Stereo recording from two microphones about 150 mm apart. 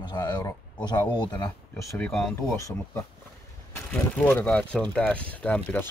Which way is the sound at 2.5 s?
20° left (ahead or behind).